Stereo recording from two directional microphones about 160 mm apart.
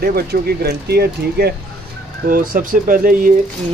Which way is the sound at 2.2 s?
60° right (ahead or behind).